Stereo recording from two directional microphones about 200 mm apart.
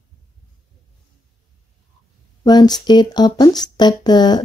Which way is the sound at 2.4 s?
20° left (ahead or behind).